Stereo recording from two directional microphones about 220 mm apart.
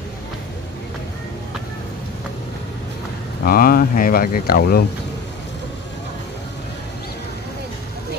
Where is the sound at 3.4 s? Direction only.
40° left (ahead or behind).